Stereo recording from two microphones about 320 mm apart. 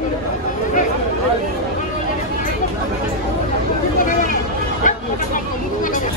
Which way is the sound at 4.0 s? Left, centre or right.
Left.